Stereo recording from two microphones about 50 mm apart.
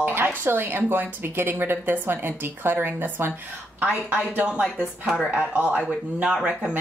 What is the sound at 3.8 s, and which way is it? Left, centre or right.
Speech, right.